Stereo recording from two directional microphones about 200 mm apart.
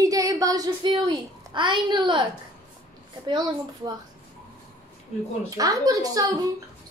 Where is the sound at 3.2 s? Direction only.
20° right (ahead or behind).